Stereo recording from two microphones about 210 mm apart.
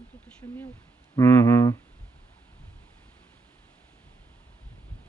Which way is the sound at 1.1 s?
15° left (ahead or behind).